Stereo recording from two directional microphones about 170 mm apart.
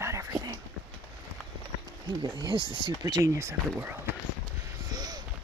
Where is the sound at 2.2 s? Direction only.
25° right (ahead or behind).